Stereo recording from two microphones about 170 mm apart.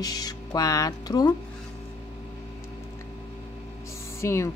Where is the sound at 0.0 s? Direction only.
25° left (ahead or behind).